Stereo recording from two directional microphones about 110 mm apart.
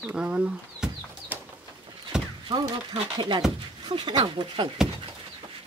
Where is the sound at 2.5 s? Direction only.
45° right (ahead or behind).